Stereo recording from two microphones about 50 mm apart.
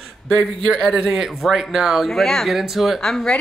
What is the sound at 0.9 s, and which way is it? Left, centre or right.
A man's voice, centre.